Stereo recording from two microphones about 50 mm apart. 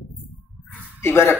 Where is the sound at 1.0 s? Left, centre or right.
Left.